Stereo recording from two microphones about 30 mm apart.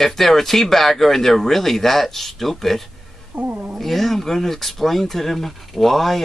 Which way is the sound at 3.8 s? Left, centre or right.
Centre.